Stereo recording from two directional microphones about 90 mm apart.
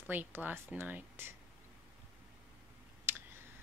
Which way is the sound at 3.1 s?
25° right (ahead or behind).